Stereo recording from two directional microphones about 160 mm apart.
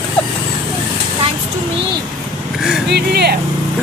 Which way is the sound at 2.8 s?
90° right.